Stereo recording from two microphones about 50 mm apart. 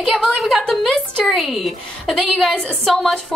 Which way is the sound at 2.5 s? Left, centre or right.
Centre.